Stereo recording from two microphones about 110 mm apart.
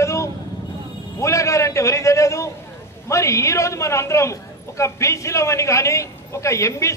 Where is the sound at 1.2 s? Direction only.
30° left (ahead or behind).